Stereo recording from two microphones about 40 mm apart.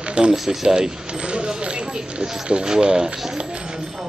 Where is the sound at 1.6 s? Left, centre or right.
Right.